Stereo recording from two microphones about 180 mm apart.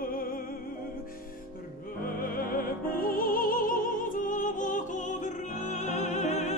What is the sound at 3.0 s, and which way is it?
Music, 50° left (ahead or behind).